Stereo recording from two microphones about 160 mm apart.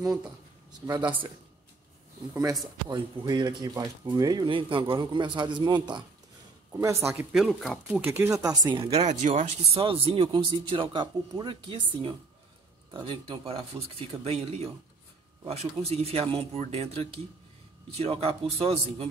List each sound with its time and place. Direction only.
0.8 s speech: 25° right (ahead or behind)
2.9 s speech: 25° right (ahead or behind)
7.3 s speech: centre (ahead or behind)
7.9 s speech: 15° right (ahead or behind)
9.0 s speech: 45° right (ahead or behind)
9.8 s speech: 35° right (ahead or behind)